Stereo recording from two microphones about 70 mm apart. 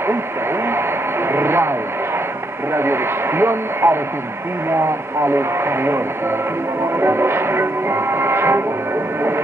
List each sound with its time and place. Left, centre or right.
1.3 s music: right
2.7 s music: right
5.2 s music: right
7.0 s music: right